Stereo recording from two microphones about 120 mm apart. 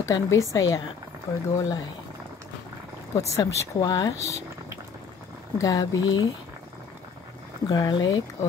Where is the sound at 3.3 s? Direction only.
25° left (ahead or behind).